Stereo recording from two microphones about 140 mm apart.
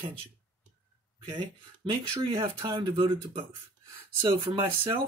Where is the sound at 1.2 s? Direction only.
35° right (ahead or behind).